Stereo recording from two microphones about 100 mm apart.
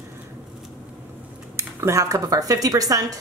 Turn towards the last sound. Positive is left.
turn(degrees=-35)  # may be behind; listen again after turning